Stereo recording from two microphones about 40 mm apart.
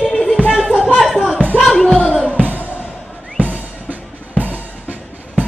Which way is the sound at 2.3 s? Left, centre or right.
Right.